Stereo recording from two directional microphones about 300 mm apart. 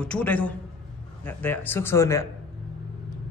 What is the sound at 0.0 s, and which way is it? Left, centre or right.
A man's voice, centre.